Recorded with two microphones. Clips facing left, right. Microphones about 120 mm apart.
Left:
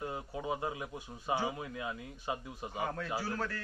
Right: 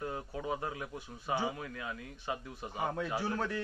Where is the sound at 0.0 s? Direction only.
15° left (ahead or behind).